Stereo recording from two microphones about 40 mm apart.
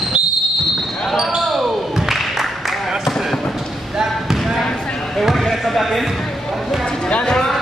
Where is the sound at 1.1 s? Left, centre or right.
Centre.